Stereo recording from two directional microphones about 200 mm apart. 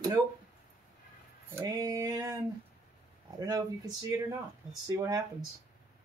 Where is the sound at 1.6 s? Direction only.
15° right (ahead or behind).